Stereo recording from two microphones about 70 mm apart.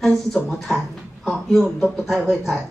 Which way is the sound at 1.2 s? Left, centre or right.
Centre.